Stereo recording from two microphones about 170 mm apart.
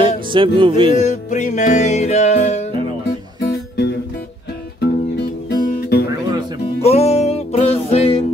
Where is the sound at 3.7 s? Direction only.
80° left.